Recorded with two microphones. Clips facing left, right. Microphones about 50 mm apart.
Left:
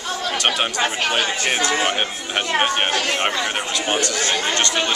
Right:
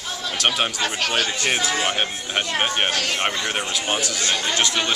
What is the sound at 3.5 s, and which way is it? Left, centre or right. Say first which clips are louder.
Speech: left 2 dB; centre.